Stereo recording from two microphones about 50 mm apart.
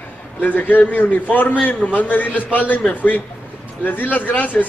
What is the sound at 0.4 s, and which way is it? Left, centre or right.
A man's voice, left.